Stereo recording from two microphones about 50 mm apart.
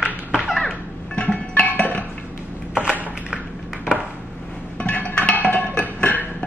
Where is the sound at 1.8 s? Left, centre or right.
Left.